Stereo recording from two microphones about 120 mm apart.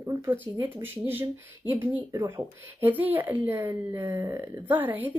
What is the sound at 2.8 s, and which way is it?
Speech, 15° right (ahead or behind).